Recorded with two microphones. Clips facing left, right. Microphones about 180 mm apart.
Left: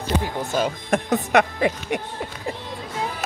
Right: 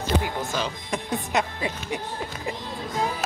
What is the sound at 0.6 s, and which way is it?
Speech, 50° left (ahead or behind).